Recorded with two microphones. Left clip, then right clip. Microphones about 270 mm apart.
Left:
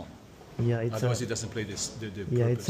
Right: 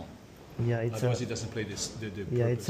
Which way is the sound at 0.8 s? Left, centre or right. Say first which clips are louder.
Left 1 dB; left.